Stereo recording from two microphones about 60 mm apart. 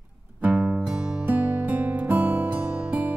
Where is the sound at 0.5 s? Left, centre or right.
Centre.